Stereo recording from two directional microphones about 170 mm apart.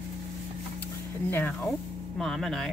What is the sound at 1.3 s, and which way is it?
Speech, 15° left (ahead or behind).